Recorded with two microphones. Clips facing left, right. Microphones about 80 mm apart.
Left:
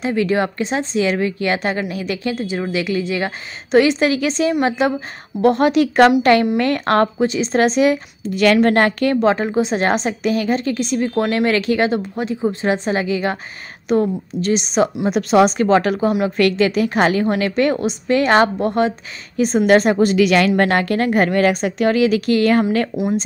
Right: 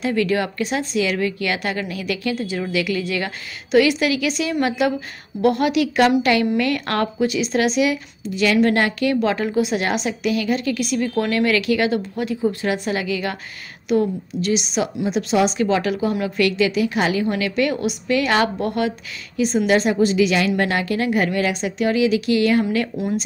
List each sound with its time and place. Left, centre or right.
0.0 s a woman's voice: left
9.2 s a woman's voice: left
15.0 s a woman's voice: left